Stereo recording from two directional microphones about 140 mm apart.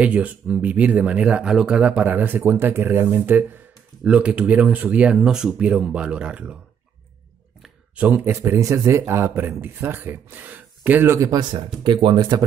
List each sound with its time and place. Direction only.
0.0 s speech: 10° right (ahead or behind)
7.6 s speech: 10° right (ahead or behind); by 12.4 s 30° right (ahead or behind)